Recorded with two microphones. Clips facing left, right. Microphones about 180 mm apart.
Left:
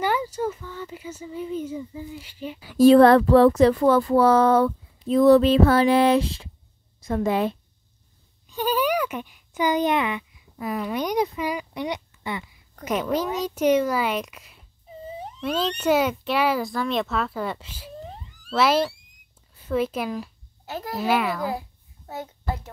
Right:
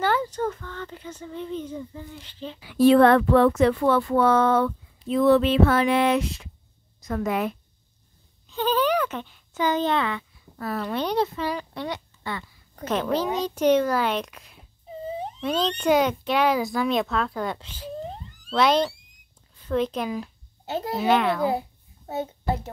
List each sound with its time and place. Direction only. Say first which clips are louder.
0.0 s a child's voice: even; 10° left (ahead or behind)
2.6 s a sound: left 3 dB; 40° left (ahead or behind)
7.0 s a woman's voice: left 3 dB; 30° left (ahead or behind)
8.5 s a child's voice: right 1 dB; 10° left (ahead or behind)
20.6 s a child's voice: right 3 dB; 25° right (ahead or behind)
21.0 s a child's voice: right 2 dB; 5° left (ahead or behind)
21.5 s a sound: right 4 dB; 25° right (ahead or behind)